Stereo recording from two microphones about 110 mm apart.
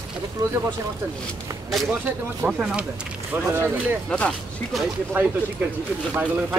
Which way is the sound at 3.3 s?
20° right (ahead or behind).